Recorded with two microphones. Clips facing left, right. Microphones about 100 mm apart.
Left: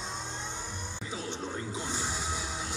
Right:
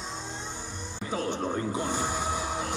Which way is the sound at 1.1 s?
55° right (ahead or behind).